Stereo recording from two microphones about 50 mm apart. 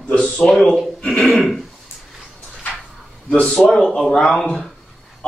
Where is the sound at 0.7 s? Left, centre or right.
Centre.